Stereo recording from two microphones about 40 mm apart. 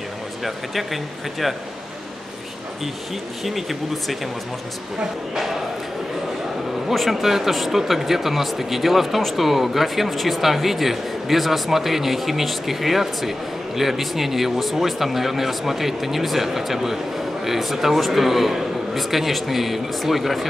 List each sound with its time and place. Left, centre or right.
0.4 s speech: centre
3.4 s speech: centre
5.3 s a man's voice: centre
6.9 s a man's voice: centre